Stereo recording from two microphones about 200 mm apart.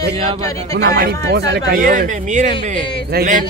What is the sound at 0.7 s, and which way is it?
Speech, 50° right (ahead or behind).